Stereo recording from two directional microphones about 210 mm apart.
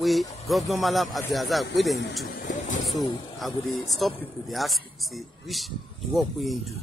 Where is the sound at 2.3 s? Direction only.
35° left (ahead or behind).